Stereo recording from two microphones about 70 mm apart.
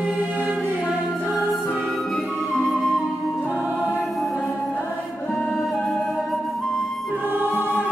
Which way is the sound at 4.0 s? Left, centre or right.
Centre.